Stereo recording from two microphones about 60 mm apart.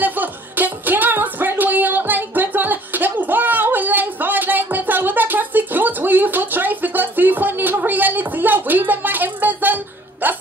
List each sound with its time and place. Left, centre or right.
0.0 s music: right
10.2 s hiccup: right